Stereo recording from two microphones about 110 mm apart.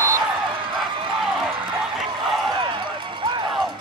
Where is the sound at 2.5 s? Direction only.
45° right (ahead or behind).